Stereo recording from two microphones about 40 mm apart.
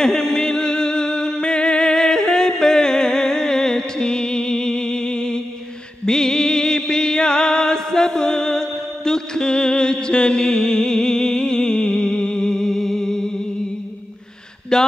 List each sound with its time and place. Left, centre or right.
0.0 s music: centre
14.7 s speech: centre